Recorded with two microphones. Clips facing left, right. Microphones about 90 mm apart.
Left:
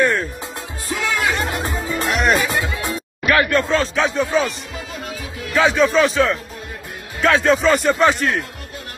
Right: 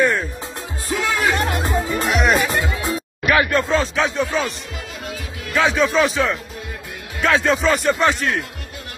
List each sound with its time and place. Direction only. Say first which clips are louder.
0.0 s music: even; centre (ahead or behind)
0.8 s music: right 1 dB; 35° right (ahead or behind)
2.0 s music: left 1 dB; centre (ahead or behind)
3.7 s a man's voice: left 1 dB; centre (ahead or behind)